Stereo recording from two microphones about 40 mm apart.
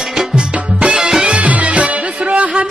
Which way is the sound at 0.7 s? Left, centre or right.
Right.